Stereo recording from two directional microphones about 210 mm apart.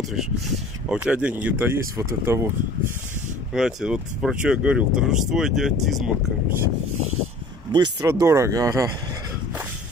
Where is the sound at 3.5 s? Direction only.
5° right (ahead or behind).